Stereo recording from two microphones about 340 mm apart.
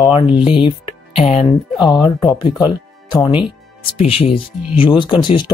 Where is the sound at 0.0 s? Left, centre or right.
Centre.